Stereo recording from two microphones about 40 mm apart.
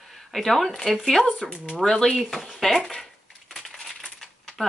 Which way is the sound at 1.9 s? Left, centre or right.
Centre.